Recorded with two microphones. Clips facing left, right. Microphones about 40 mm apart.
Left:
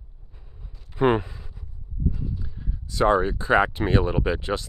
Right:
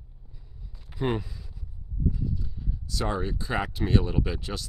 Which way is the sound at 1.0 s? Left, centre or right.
Left.